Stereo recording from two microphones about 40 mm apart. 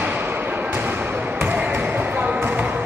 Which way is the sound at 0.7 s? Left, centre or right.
Right.